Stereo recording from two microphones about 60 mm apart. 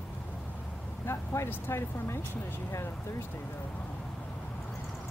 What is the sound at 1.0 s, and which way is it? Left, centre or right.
Speech, left.